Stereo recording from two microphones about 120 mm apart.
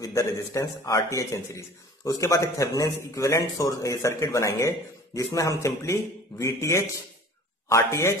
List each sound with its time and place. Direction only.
0.0 s a man's voice: 25° left (ahead or behind)